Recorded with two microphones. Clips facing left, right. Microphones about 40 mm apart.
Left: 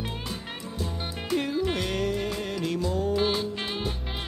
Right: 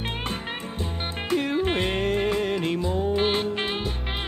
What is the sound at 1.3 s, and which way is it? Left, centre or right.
Music, right.